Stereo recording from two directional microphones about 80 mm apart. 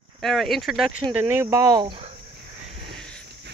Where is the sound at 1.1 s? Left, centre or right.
Right.